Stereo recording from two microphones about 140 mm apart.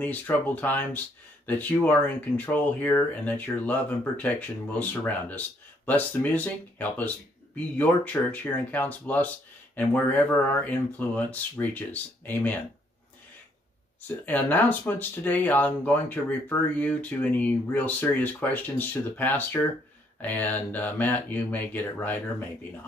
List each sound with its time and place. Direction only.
0.0 s speech: 10° left (ahead or behind)
14.0 s speech: 10° left (ahead or behind)